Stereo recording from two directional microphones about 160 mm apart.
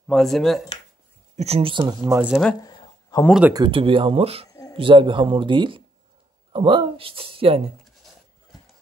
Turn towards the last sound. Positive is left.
turn(degrees=-35)  # may be behind; listen again after turning